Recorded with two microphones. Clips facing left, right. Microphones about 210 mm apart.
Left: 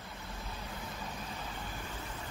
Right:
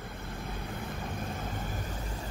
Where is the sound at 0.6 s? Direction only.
55° right (ahead or behind).